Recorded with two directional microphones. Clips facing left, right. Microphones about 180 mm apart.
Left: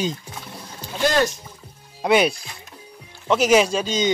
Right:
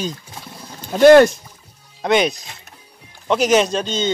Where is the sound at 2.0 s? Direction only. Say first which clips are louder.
Right 1 dB; 5° left (ahead or behind).